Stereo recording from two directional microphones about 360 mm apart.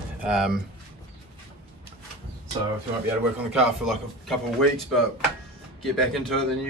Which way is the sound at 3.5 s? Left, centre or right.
Centre.